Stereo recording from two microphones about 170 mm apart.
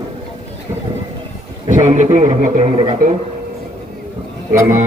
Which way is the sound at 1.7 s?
45° right (ahead or behind).